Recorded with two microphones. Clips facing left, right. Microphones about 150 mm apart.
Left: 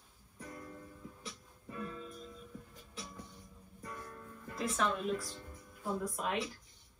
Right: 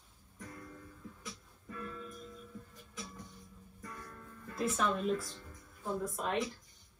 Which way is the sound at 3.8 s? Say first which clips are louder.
Left 2 dB; 20° left (ahead or behind).